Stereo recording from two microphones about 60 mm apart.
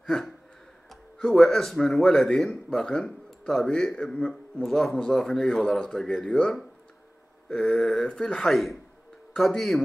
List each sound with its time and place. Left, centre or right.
0.0 s a man's voice: centre